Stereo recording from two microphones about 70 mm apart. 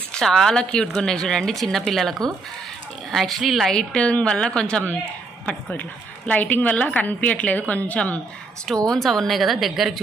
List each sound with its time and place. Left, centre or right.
0.1 s a woman's voice: centre
8.7 s speech: centre